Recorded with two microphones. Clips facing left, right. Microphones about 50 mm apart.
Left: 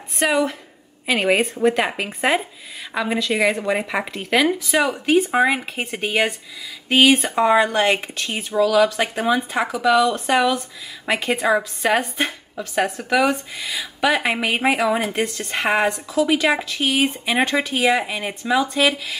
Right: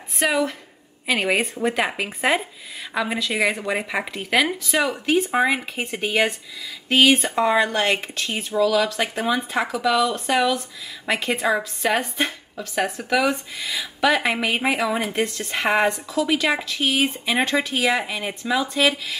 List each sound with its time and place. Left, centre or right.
0.1 s a woman's voice: centre